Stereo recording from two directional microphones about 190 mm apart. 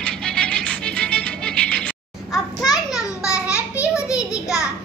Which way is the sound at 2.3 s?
20° left (ahead or behind).